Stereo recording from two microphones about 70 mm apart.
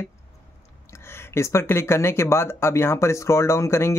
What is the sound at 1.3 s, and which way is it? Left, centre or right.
Speech, left.